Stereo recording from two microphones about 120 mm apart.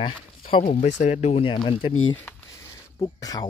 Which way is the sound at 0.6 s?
75° left (ahead or behind).